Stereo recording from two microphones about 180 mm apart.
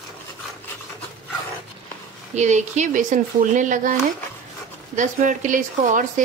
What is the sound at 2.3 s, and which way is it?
Speech, 40° right (ahead or behind).